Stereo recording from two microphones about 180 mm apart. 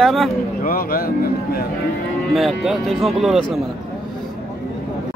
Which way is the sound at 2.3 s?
Centre (ahead or behind).